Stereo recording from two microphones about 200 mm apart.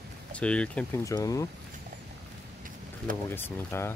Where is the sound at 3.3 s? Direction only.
10° left (ahead or behind).